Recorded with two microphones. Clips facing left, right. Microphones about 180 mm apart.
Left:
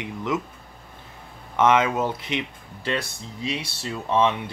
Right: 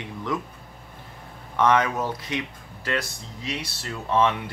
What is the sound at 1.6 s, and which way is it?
Speech, 20° left (ahead or behind).